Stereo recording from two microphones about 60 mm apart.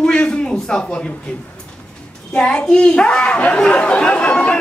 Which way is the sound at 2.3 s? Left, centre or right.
Centre.